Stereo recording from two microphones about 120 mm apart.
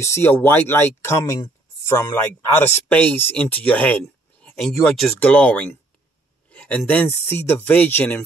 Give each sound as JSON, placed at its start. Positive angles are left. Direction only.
{"t": 0.0, "sound": "speech", "side_deg": 20}
{"t": 5.2, "sound": "speech", "side_deg": 10}
{"t": 6.5, "sound": "a sound", "side_deg": 10}
{"t": 6.9, "sound": "speech", "side_deg": 15}